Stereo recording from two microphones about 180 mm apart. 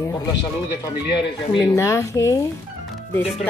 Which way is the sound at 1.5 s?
15° left (ahead or behind).